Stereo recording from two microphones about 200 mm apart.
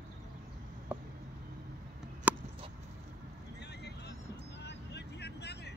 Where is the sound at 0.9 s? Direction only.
5° right (ahead or behind).